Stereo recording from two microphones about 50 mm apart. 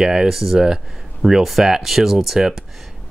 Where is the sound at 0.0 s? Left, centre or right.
Centre.